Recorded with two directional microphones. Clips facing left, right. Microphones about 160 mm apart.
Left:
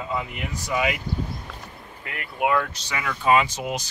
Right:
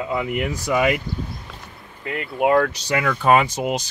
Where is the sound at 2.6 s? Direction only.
65° right (ahead or behind).